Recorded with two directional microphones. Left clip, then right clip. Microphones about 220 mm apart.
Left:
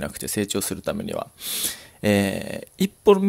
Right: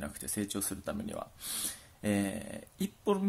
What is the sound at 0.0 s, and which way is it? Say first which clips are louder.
Speech: left 12 dB; 35° left (ahead or behind).